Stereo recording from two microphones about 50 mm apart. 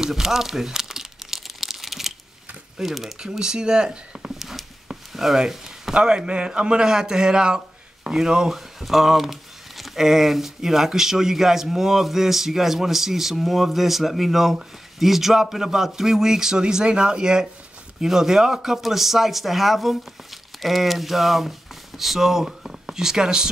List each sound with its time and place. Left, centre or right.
0.0 s crumpling: centre
2.8 s a man's voice: centre
4.4 s a sound: centre
5.9 s a man's voice: centre